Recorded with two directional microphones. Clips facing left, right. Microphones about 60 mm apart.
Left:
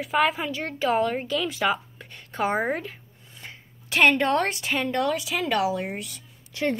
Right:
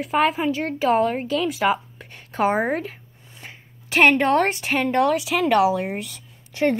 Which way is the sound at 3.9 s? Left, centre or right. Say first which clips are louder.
Right 4 dB; right.